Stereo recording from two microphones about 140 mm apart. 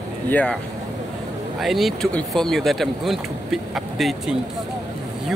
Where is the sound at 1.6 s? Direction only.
Centre (ahead or behind).